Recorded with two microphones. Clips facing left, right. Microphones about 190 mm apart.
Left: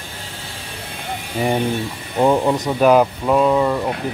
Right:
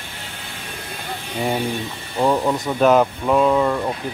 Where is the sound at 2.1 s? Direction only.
15° left (ahead or behind).